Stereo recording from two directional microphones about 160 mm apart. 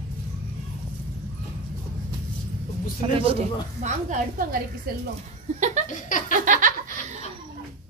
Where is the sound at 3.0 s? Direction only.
35° right (ahead or behind).